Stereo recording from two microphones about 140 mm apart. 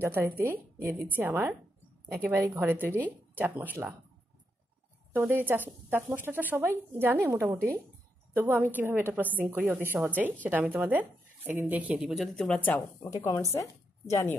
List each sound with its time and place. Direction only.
0.0 s speech: 15° right (ahead or behind)
5.1 s a woman's voice: 15° right (ahead or behind); by 14.3 s 20° left (ahead or behind)